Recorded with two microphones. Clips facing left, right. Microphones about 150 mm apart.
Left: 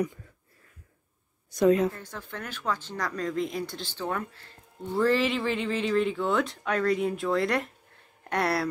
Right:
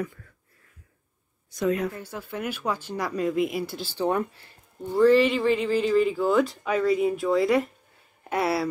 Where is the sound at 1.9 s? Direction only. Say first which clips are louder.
Right 5 dB; 10° right (ahead or behind).